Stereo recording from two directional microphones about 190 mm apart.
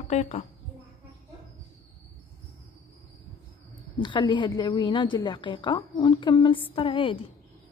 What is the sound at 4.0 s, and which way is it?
A woman's voice, 25° left (ahead or behind).